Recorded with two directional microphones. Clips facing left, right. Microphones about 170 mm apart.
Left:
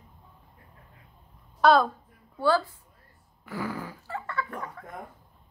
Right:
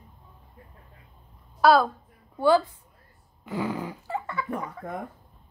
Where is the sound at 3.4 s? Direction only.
20° right (ahead or behind).